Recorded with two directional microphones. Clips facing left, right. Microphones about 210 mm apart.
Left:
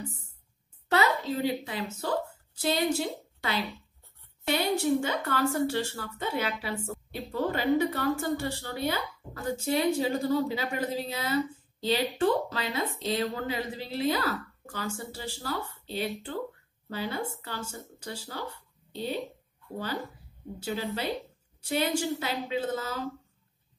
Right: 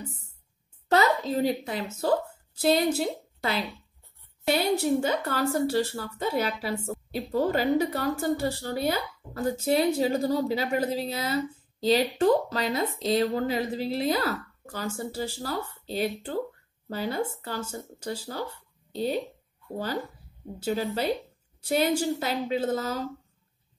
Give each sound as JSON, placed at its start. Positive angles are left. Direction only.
{"t": 0.8, "sound": "a woman's voice", "side_deg": -40}
{"t": 20.5, "sound": "speech", "side_deg": -40}